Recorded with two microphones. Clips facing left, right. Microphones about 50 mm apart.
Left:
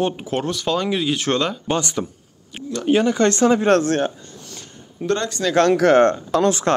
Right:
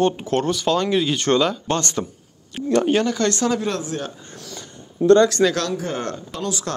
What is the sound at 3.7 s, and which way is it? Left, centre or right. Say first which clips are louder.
Speech: left 10 dB; left.